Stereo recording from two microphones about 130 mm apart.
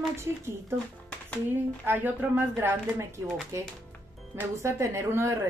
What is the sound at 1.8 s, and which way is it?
Speech, 15° right (ahead or behind).